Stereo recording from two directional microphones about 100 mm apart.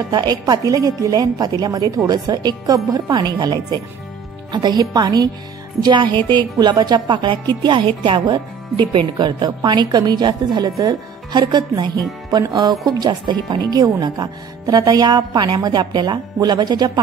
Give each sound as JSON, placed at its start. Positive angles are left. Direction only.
{"t": 0.1, "sound": "a woman's voice", "side_deg": -45}